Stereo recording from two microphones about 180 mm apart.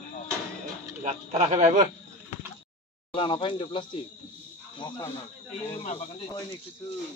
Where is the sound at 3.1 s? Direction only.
30° left (ahead or behind).